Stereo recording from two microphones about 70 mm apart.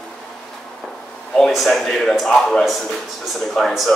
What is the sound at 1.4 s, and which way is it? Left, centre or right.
A man's voice, centre.